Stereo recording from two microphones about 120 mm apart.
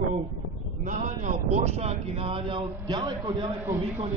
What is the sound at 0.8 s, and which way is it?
A man's voice, 90° right.